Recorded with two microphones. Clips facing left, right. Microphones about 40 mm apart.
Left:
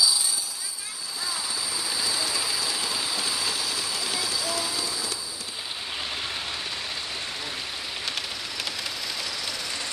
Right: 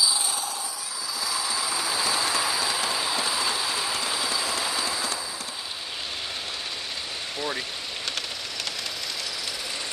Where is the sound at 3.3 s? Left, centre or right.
Right.